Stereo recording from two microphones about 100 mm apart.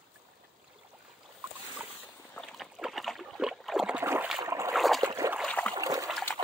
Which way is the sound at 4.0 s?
20° right (ahead or behind).